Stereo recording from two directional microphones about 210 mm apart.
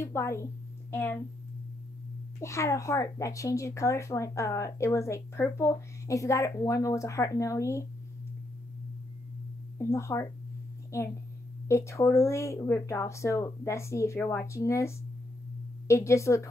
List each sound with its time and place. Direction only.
0.0 s speech: 10° left (ahead or behind)
2.4 s speech: 15° left (ahead or behind)
9.8 s speech: 15° left (ahead or behind)